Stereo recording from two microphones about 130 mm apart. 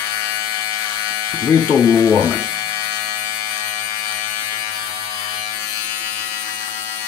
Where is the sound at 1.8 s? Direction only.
20° left (ahead or behind).